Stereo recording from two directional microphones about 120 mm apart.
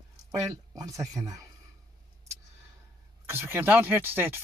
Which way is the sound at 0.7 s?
30° right (ahead or behind).